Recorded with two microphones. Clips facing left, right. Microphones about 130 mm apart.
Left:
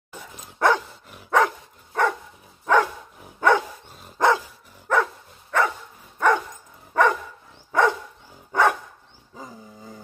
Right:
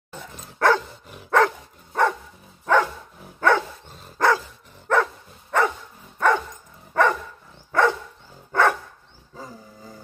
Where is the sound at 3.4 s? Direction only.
15° left (ahead or behind).